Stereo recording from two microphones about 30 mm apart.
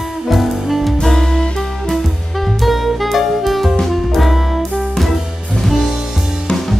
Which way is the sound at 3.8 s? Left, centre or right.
Centre.